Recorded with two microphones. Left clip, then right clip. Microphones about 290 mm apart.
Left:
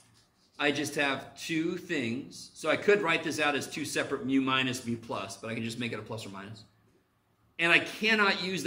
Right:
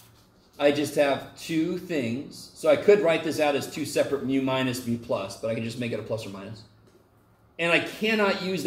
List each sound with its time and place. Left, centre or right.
0.6 s speech: left
7.5 s speech: left